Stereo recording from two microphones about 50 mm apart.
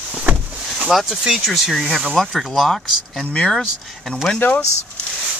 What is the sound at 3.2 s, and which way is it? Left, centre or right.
Speech, left.